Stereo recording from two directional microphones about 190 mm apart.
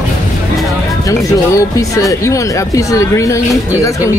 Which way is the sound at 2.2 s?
15° left (ahead or behind).